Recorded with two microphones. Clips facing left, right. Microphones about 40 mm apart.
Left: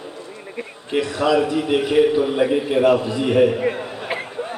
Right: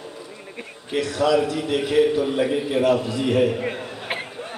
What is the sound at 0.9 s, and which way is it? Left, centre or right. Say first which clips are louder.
A man's voice: left 2 dB; centre.